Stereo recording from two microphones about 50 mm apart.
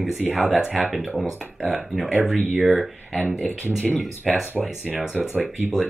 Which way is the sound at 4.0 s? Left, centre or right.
Centre.